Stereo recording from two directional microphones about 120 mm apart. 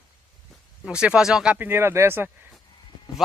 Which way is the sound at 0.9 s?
10° right (ahead or behind).